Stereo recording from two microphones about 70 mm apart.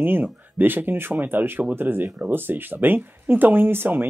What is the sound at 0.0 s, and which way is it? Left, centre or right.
Speech, right.